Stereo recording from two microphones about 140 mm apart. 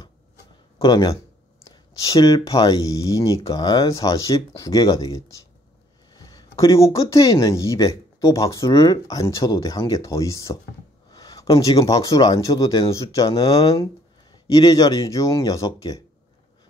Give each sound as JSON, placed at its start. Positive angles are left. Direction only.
{"t": 0.7, "sound": "speech", "side_deg": 30}
{"t": 11.1, "sound": "a sound", "side_deg": 25}
{"t": 11.5, "sound": "speech", "side_deg": 25}